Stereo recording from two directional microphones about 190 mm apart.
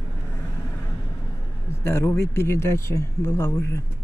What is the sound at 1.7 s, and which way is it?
Speech, 15° left (ahead or behind).